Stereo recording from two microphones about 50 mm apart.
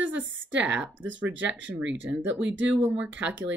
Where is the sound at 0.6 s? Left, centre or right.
Right.